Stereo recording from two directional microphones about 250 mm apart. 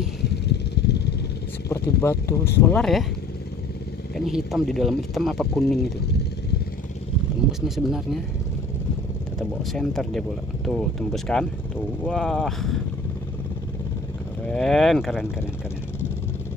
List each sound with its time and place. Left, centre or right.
0.2 s a sound: left
1.7 s speech: centre
4.3 s speech: centre
7.6 s speech: centre
9.4 s speech: centre
14.5 s speech: centre